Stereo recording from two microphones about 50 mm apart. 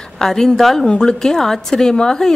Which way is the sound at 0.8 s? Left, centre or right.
Centre.